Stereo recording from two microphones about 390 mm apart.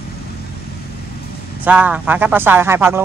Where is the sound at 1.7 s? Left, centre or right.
Centre.